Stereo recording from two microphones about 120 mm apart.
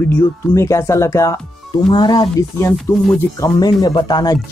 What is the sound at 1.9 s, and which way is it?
Speech, 40° left (ahead or behind).